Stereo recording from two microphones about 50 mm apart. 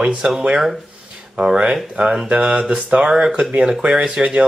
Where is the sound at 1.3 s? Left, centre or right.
Centre.